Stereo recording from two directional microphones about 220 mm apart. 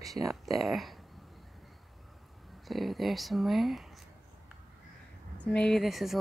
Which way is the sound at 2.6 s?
Centre (ahead or behind).